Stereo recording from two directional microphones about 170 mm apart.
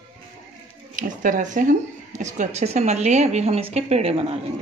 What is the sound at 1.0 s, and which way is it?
Speech, 50° right (ahead or behind).